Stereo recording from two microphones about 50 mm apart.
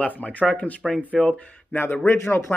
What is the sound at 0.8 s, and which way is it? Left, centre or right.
Speech, centre.